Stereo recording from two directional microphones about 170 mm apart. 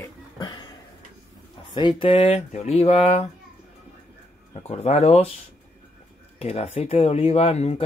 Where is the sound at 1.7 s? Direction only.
30° left (ahead or behind).